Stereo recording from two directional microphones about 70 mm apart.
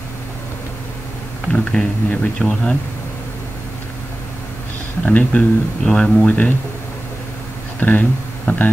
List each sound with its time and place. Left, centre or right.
1.5 s speech: centre
5.0 s speech: left
5.9 s speech: centre
7.8 s speech: left